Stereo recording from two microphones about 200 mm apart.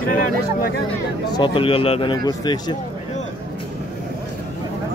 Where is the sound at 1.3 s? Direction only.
25° left (ahead or behind).